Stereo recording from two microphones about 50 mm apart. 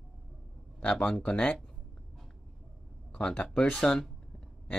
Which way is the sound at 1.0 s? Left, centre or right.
Centre.